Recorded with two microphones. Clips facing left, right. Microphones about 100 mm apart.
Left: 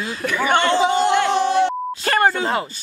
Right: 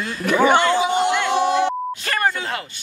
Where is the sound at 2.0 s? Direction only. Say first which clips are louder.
Left 6 dB; 35° left (ahead or behind).